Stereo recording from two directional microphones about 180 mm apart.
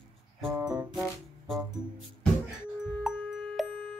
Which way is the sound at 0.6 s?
20° right (ahead or behind).